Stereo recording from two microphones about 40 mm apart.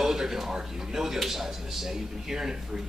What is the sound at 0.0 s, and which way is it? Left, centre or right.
A man's voice, centre.